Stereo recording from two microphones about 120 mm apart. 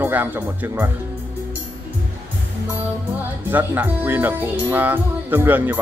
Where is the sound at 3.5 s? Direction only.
15° right (ahead or behind).